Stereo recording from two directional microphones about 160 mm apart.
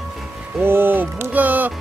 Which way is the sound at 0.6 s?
15° right (ahead or behind).